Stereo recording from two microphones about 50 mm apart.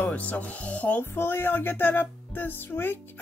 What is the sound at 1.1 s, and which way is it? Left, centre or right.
Speech, left.